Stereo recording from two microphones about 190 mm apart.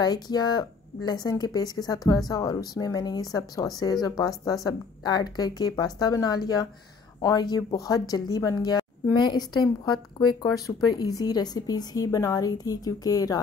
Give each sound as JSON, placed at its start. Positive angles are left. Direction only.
{"t": 0.0, "sound": "speech", "side_deg": 20}